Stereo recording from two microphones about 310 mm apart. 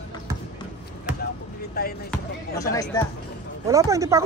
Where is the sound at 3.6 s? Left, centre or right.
Centre.